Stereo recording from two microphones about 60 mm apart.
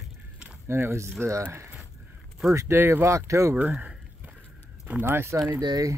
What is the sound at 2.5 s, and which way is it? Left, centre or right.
Speech, right.